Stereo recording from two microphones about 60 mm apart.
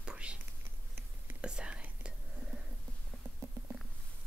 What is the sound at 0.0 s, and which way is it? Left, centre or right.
Whispering, centre.